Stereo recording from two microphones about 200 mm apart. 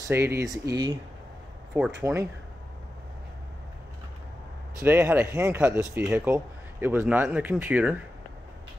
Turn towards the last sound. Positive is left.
turn(degrees=-10)  # may be behind; listen again after turning